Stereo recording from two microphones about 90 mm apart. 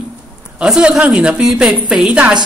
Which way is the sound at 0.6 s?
5° right (ahead or behind).